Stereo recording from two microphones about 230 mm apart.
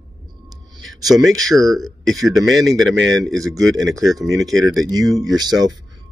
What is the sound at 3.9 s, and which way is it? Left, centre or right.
Speech, centre.